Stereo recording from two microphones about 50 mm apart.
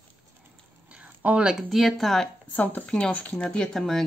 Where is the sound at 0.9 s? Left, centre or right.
Right.